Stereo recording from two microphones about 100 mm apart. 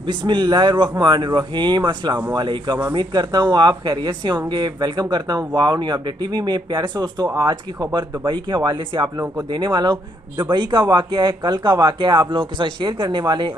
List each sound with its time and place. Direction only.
0.2 s speech: 50° right (ahead or behind)